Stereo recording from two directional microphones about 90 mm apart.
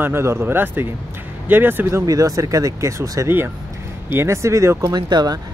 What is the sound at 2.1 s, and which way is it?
Speech, 35° right (ahead or behind).